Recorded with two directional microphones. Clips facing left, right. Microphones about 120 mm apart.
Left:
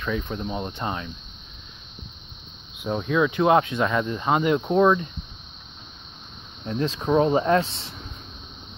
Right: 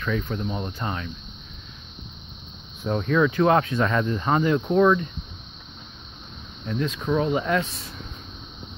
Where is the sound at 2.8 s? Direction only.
10° left (ahead or behind).